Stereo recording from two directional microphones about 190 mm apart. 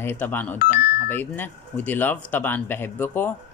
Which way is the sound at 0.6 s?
50° left (ahead or behind).